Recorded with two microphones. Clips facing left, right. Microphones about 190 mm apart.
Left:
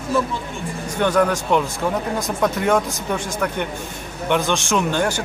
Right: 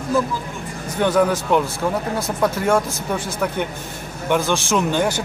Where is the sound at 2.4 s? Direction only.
Centre (ahead or behind).